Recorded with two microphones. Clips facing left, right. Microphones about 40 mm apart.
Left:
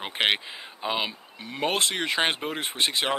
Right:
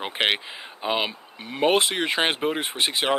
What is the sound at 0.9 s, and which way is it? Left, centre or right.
Speech, centre.